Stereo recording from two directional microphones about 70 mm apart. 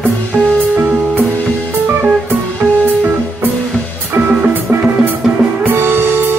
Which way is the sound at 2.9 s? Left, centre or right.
Right.